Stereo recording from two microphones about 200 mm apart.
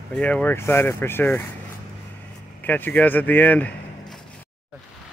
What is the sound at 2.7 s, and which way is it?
Speech, 10° left (ahead or behind).